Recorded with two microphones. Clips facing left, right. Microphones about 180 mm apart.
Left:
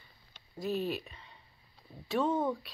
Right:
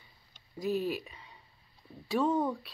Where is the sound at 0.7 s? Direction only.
10° right (ahead or behind).